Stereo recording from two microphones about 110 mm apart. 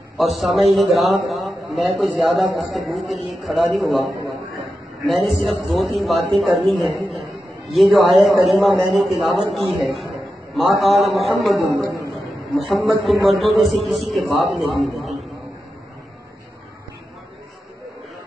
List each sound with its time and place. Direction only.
0.2 s a man's voice: centre (ahead or behind)
10.8 s a man's voice: centre (ahead or behind)
11.8 s a man's voice: 30° right (ahead or behind)
12.5 s a man's voice: centre (ahead or behind)
14.7 s a sound: centre (ahead or behind)